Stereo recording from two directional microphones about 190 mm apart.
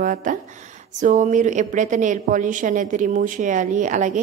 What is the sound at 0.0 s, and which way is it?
A woman's voice, 45° right (ahead or behind).